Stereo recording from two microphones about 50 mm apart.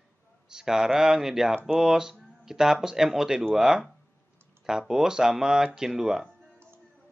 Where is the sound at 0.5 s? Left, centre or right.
Centre.